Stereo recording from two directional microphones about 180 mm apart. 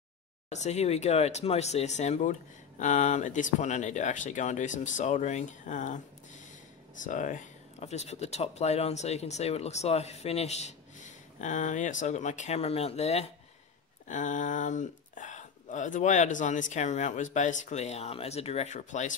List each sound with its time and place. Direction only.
0.5 s speech: 40° left (ahead or behind)